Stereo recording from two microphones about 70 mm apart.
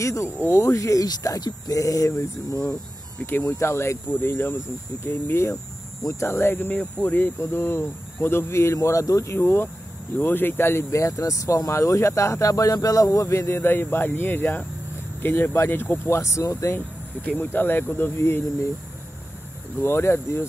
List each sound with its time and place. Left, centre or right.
0.0 s speech: left
3.3 s speech: left
6.0 s speech: left
7.3 s speech: left
16.2 s speech: left
17.2 s speech: left
19.8 s speech: left